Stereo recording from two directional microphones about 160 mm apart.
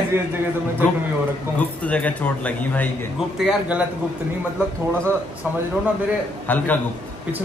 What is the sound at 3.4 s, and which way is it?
Speech, 5° right (ahead or behind).